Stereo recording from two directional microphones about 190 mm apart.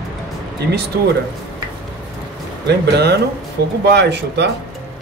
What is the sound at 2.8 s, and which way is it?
Speech, 60° right (ahead or behind).